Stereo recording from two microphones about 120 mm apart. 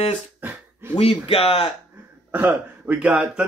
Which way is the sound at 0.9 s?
55° left (ahead or behind).